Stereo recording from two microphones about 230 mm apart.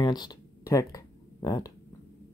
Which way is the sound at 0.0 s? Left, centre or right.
Centre.